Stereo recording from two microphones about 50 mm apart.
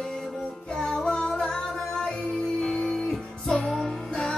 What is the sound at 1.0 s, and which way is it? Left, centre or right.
Music, centre.